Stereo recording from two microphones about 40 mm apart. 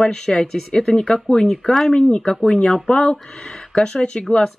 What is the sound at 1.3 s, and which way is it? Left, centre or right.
Speech, left.